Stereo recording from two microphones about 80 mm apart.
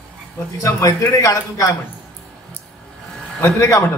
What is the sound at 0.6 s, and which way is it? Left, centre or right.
A man's voice, left.